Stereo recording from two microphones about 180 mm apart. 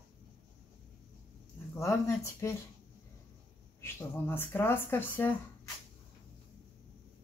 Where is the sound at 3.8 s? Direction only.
15° left (ahead or behind).